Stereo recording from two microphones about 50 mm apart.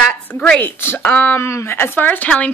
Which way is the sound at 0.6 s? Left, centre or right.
Left.